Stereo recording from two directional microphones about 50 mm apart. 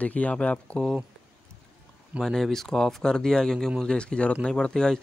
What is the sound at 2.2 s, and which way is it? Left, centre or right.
Speech, centre.